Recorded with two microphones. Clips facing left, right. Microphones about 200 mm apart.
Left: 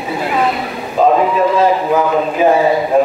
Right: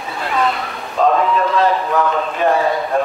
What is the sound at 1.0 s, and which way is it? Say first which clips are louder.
A man's voice: left 3 dB; 10° left (ahead or behind).